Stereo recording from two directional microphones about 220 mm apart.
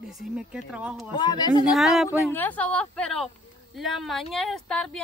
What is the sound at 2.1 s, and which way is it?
Speech, 10° left (ahead or behind).